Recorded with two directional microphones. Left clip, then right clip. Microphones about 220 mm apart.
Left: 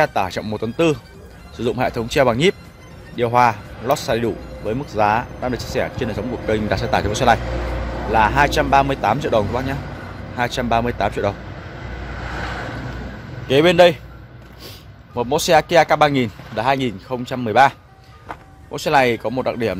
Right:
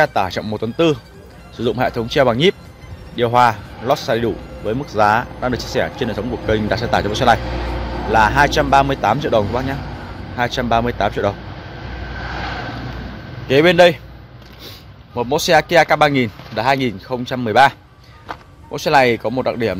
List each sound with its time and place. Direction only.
0.0 s speech: 5° right (ahead or behind)
7.4 s music: 30° left (ahead or behind)
8.1 s speech: 10° right (ahead or behind)
12.2 s vehicle: 30° left (ahead or behind)
13.5 s speech: centre (ahead or behind)
15.1 s speech: centre (ahead or behind)